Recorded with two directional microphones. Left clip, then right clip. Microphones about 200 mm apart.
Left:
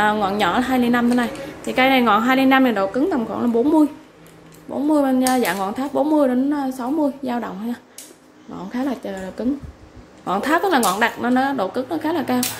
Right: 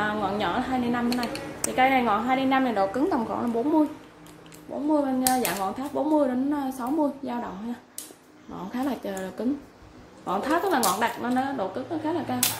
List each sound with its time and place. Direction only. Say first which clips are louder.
0.0 s speech: left 8 dB; 25° left (ahead or behind)
3.4 s speech: left 9 dB; 30° left (ahead or behind)
4.9 s speech: left 6 dB; 30° left (ahead or behind)
8.7 s speech: left 4 dB; 10° left (ahead or behind)
10.2 s speech: left 6 dB; 20° left (ahead or behind)